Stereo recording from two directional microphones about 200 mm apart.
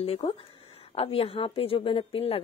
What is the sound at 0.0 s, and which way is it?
A woman's voice, 30° left (ahead or behind).